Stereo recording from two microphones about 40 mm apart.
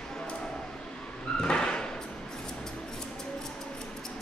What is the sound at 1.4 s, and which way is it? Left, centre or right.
Slam, centre.